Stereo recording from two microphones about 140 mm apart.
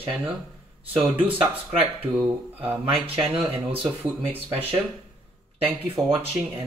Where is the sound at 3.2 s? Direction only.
15° right (ahead or behind).